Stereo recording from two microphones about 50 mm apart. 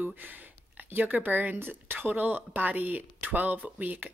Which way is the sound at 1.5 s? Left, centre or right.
Right.